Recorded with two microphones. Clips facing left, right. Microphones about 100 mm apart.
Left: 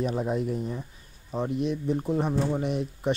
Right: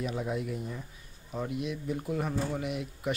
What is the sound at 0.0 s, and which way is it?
Speech, 35° left (ahead or behind).